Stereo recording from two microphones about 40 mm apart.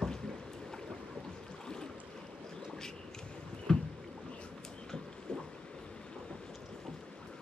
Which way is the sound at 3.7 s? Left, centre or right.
Centre.